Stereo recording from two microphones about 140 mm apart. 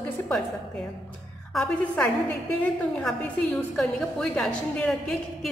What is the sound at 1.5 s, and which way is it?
Speech, 10° left (ahead or behind).